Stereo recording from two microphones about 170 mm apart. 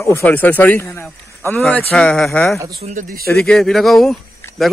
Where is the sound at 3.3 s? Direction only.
5° left (ahead or behind).